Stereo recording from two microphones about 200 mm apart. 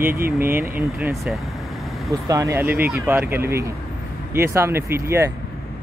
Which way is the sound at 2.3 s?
15° right (ahead or behind).